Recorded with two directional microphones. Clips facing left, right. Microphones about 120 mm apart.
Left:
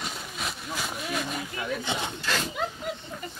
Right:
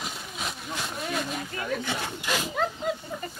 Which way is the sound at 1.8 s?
20° left (ahead or behind).